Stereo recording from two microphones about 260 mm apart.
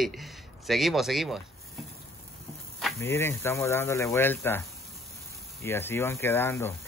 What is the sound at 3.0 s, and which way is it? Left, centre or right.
Speech, centre.